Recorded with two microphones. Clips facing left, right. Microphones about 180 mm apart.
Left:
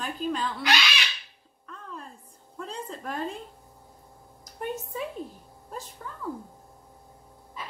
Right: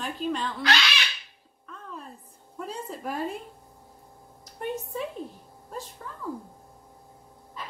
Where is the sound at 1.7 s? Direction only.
Centre (ahead or behind).